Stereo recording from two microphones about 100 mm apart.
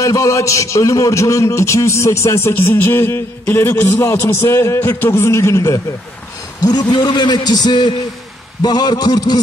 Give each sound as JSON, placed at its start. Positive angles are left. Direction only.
{"t": 0.0, "sound": "a man's voice", "side_deg": 30}
{"t": 6.6, "sound": "a man's voice", "side_deg": 45}